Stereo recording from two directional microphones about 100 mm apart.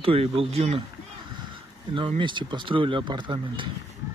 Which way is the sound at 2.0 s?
55° right (ahead or behind).